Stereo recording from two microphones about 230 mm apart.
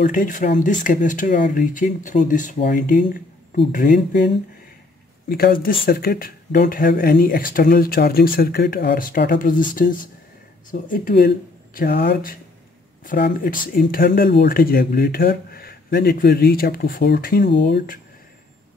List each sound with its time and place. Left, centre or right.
0.0 s speech: left
5.3 s speech: left